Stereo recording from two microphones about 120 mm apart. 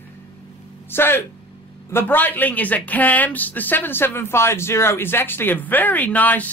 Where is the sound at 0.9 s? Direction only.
20° left (ahead or behind).